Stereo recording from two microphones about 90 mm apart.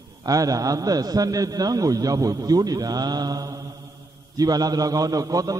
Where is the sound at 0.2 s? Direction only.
40° right (ahead or behind).